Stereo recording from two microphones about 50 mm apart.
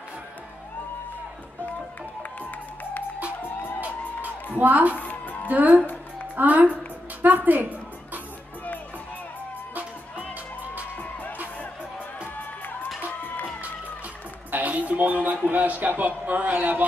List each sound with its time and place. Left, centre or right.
4.6 s a man's voice: right
4.9 s music: left
5.5 s a man's voice: right
14.5 s a sound: right
15.5 s a man's voice: right